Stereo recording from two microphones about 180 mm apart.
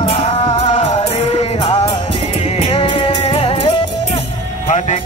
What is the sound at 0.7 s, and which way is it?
Music, 35° left (ahead or behind).